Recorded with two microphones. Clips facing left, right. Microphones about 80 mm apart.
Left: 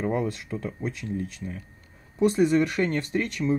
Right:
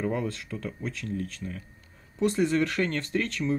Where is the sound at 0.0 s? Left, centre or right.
Left.